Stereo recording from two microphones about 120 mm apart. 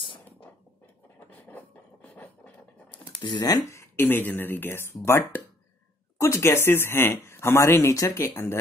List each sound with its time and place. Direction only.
1.3 s scratch: 10° left (ahead or behind)
3.2 s speech: 30° left (ahead or behind)